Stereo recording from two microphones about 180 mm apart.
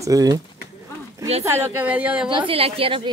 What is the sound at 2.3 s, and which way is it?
Speech, 30° right (ahead or behind).